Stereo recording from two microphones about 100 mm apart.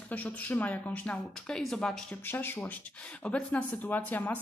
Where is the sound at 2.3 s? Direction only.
20° left (ahead or behind).